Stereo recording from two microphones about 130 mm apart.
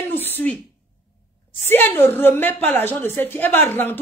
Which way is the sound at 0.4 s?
15° left (ahead or behind).